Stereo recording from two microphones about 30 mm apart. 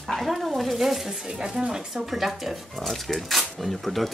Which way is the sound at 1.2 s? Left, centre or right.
Right.